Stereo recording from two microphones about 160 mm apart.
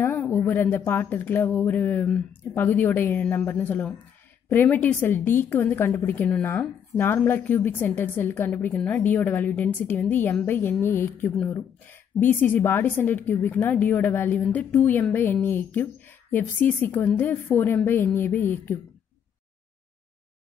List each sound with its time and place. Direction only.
0.0 s a woman's voice: 15° left (ahead or behind)